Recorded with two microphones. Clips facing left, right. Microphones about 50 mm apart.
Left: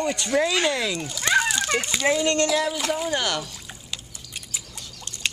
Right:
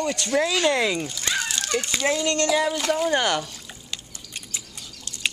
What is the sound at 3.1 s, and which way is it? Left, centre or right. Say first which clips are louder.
Speech: right 3 dB; centre.